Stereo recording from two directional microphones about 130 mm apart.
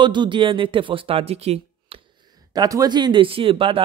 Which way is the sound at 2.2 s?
30° right (ahead or behind).